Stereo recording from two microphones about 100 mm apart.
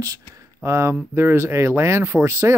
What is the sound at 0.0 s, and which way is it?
Speech, 30° right (ahead or behind).